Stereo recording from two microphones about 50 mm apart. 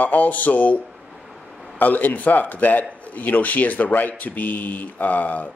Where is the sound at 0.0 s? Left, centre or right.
Left.